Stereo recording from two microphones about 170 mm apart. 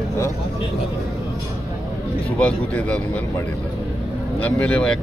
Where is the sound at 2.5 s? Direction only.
5° left (ahead or behind).